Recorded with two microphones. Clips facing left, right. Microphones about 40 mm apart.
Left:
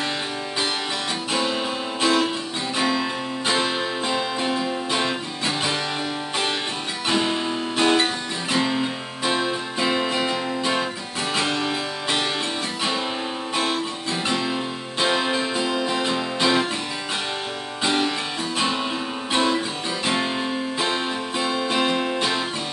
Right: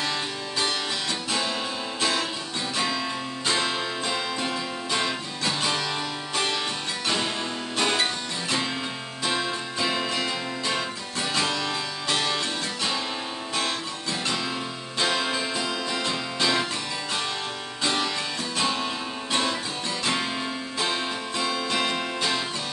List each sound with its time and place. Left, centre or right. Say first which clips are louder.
1.3 s music: left 5 dB; centre
7.1 s guitar: left 6 dB; centre
11.3 s music: left 3 dB; centre
14.3 s music: left 5 dB; centre
17.8 s music: left 4 dB; centre